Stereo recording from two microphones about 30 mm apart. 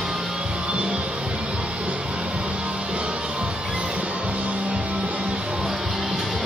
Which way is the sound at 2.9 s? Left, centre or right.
Right.